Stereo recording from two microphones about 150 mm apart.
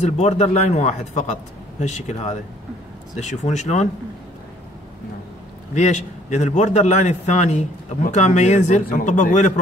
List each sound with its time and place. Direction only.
0.0 s a man's voice: 50° left (ahead or behind)
5.8 s a man's voice: 50° left (ahead or behind)